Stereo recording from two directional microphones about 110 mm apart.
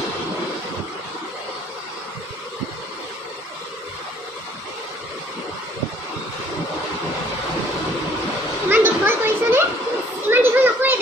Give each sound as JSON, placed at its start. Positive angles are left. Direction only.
{"t": 8.6, "sound": "children playing", "side_deg": -20}